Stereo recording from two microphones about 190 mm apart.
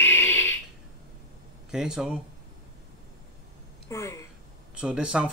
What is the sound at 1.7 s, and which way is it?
Speech, 5° right (ahead or behind).